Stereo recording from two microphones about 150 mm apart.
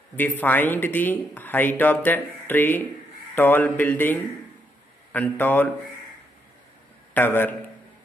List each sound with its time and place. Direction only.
0.4 s speech: 10° left (ahead or behind)
7.2 s speech: 15° left (ahead or behind)